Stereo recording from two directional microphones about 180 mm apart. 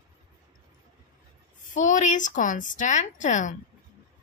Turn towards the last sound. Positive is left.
turn(degrees=45)  # may be behind; listen again after turning